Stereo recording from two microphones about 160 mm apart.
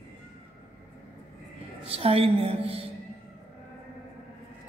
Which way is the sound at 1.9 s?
35° right (ahead or behind).